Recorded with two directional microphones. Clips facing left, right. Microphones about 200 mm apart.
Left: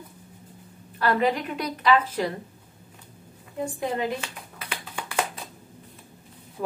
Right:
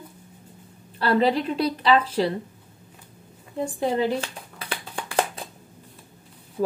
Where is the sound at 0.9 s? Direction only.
30° right (ahead or behind).